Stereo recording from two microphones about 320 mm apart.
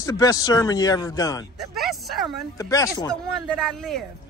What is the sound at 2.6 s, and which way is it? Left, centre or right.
Speech, centre.